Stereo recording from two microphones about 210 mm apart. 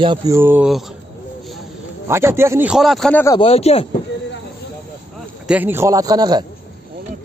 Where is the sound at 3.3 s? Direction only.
30° left (ahead or behind).